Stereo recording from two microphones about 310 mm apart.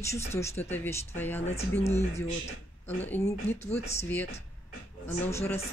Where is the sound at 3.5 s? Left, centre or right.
Left.